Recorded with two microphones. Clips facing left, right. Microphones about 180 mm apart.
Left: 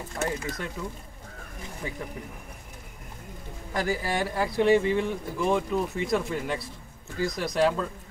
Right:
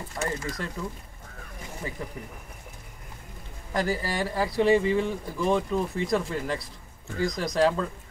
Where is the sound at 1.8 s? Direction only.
Centre (ahead or behind).